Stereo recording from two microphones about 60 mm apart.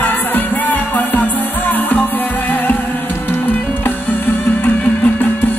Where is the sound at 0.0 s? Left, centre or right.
Left.